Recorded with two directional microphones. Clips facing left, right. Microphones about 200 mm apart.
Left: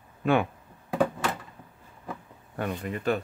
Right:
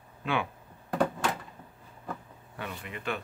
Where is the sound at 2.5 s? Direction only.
45° left (ahead or behind).